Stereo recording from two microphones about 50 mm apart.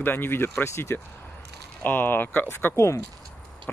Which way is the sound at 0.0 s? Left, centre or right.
Left.